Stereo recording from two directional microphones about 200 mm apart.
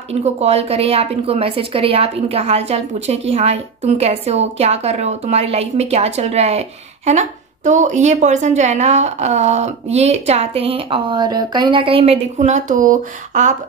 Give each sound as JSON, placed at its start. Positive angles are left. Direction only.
{"t": 0.1, "sound": "a woman's voice", "side_deg": -30}